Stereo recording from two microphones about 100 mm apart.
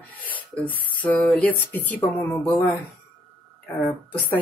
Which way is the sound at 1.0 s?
15° left (ahead or behind).